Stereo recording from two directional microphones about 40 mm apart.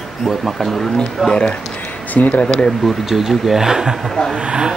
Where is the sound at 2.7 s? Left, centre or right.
Centre; by 4.7 s right.